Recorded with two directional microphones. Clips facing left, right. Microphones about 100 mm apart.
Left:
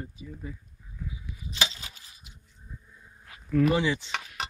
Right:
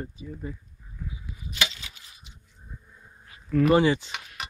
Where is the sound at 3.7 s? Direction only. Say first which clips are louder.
Right 6 dB; 50° right (ahead or behind).